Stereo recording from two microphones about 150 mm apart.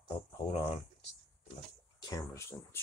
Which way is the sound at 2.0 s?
25° left (ahead or behind).